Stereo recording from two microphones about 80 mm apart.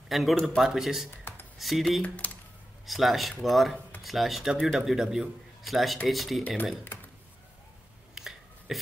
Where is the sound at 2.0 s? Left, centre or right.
Centre.